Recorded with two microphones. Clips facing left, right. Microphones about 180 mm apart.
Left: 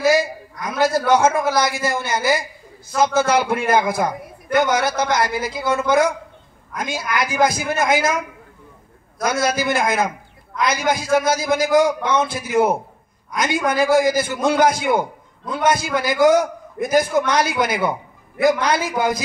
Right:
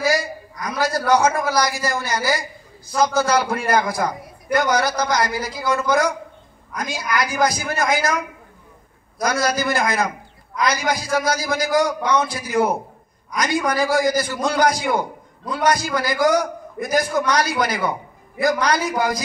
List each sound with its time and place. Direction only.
0.0 s a sound: 25° left (ahead or behind)
0.7 s a man's voice: 25° left (ahead or behind)
9.2 s a man's voice: 25° left (ahead or behind)